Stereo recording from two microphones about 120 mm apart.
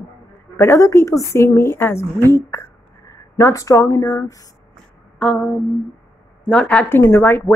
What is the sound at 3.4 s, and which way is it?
A woman's voice, 25° left (ahead or behind).